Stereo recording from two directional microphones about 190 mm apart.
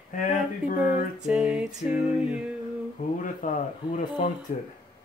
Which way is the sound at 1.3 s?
5° right (ahead or behind).